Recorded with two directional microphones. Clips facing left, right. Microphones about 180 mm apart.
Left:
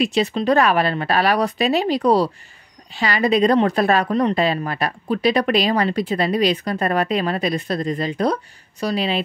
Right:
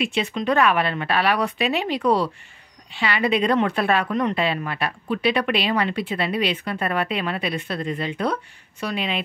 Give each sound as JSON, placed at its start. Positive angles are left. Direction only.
{"t": 0.0, "sound": "a woman's voice", "side_deg": 40}